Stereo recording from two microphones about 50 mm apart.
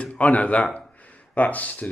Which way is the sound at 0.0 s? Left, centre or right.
Left.